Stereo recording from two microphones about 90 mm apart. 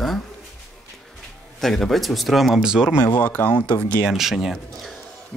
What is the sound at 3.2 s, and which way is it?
Speech, 15° left (ahead or behind).